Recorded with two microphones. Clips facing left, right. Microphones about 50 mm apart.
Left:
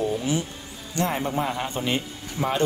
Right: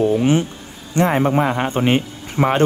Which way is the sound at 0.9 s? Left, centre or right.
Right.